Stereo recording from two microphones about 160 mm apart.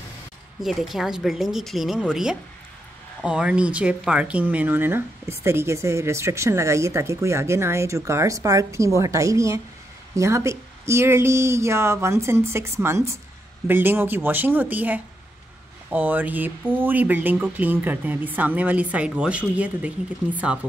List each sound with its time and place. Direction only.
0.6 s speech: centre (ahead or behind)